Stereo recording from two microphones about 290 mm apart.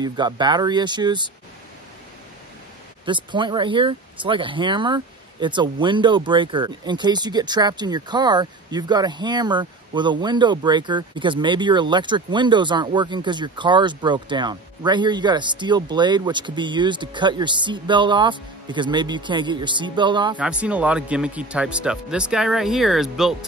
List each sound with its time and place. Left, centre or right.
0.0 s speech: centre
3.1 s speech: centre
20.3 s speech: centre